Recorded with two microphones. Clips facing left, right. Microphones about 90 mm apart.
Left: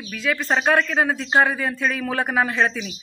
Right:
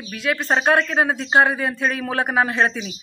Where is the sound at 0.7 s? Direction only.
10° right (ahead or behind).